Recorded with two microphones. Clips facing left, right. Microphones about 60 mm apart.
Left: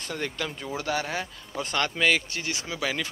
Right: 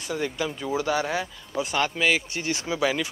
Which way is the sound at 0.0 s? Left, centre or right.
Centre.